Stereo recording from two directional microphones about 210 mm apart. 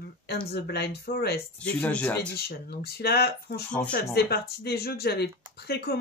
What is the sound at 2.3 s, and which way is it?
Speech, 50° left (ahead or behind).